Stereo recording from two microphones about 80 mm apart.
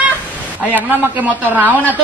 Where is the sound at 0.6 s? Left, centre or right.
Right.